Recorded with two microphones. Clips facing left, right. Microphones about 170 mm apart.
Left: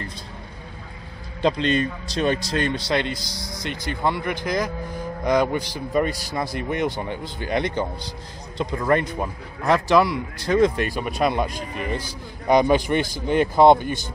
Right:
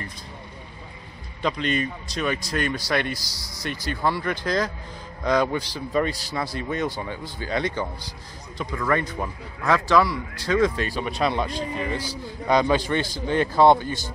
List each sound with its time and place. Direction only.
1.4 s a man's voice: 30° left (ahead or behind)